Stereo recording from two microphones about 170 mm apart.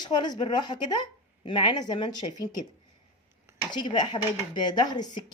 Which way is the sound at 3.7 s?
25° left (ahead or behind).